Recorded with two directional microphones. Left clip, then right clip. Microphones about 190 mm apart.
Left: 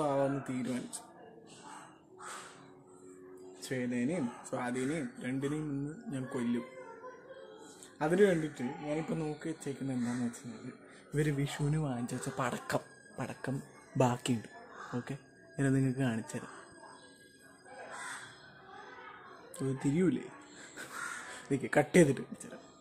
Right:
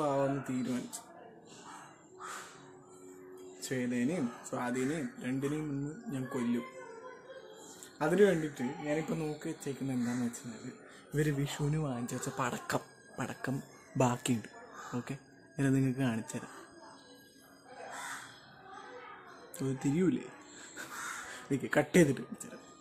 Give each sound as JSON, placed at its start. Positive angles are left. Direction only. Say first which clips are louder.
{"t": 0.0, "sound": "a sound", "louder": "even", "side_deg": 0}
{"t": 3.6, "sound": "speech", "louder": "right 1 dB", "side_deg": 0}
{"t": 8.0, "sound": "speech", "louder": "right 1 dB", "side_deg": 0}
{"t": 19.5, "sound": "speech", "louder": "even", "side_deg": 0}
{"t": 21.5, "sound": "speech", "louder": "left 1 dB", "side_deg": 5}